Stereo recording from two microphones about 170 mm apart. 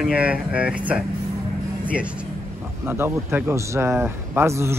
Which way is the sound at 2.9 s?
10° right (ahead or behind).